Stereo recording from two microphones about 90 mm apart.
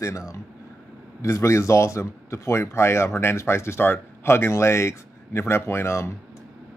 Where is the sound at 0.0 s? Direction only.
35° left (ahead or behind).